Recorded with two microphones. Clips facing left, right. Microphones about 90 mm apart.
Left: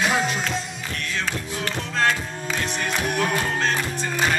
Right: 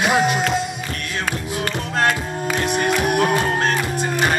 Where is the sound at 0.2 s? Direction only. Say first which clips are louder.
Right 6 dB; 60° right (ahead or behind).